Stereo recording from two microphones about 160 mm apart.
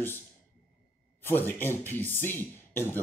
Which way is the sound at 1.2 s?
15° left (ahead or behind).